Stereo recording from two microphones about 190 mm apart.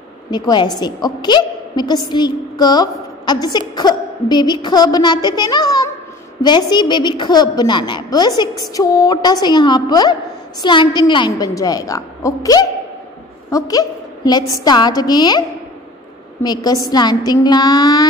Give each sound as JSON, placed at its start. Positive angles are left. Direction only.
{"t": 0.3, "sound": "a woman's voice", "side_deg": 20}
{"t": 16.4, "sound": "a woman's voice", "side_deg": 20}